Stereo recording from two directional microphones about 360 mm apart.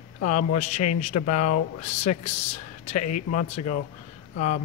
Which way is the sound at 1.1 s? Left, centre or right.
Left.